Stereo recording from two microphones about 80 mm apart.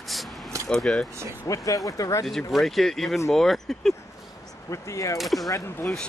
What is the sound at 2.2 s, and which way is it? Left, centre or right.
Speech, centre.